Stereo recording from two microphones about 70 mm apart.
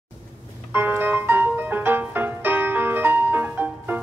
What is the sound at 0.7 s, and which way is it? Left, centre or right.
Music, right.